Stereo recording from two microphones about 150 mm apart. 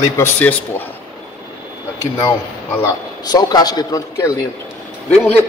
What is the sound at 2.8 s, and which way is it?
A man's voice, 25° left (ahead or behind).